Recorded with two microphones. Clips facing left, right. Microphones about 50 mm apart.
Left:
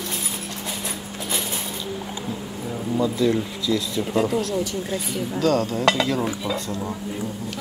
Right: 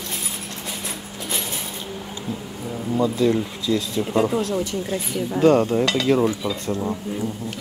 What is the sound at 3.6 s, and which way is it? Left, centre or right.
Speech, right.